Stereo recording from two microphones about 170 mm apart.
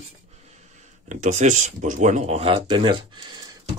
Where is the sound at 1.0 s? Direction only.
45° right (ahead or behind).